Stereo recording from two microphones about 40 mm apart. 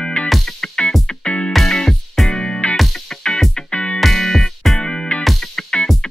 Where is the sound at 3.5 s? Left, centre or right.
Left.